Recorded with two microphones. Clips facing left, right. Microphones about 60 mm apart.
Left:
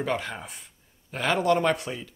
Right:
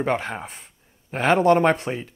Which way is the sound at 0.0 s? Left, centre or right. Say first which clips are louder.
Right 5 dB; right.